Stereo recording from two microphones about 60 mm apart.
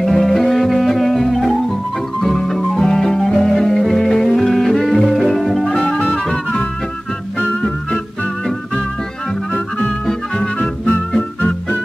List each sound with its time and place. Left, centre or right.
0.0 s music: centre
9.5 s music: centre